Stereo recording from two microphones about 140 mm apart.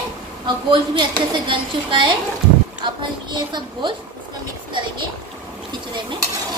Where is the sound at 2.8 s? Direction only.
35° right (ahead or behind).